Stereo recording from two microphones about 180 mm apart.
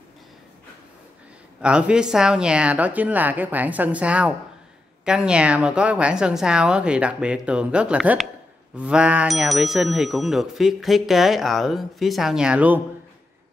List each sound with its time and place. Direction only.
1.6 s speech: 5° right (ahead or behind)